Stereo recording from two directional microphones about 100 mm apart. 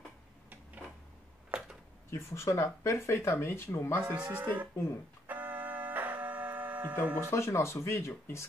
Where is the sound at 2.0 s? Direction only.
30° left (ahead or behind).